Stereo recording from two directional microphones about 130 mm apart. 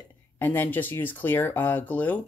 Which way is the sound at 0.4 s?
15° left (ahead or behind).